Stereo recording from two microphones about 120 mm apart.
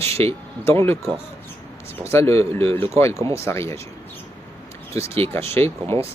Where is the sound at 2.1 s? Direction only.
20° left (ahead or behind).